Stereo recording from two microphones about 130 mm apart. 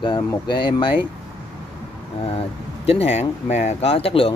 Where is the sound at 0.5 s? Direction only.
35° left (ahead or behind).